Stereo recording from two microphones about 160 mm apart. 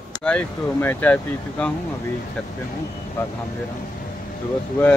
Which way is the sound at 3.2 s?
15° left (ahead or behind).